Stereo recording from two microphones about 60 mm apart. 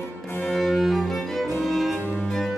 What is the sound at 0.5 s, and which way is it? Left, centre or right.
Music, centre.